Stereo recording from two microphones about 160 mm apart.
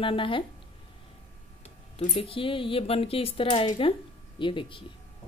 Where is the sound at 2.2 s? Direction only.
35° left (ahead or behind).